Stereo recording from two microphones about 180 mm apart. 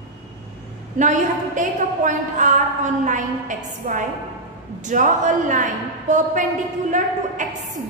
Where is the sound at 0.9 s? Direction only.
45° right (ahead or behind).